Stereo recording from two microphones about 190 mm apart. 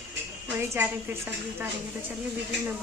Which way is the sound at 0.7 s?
10° right (ahead or behind).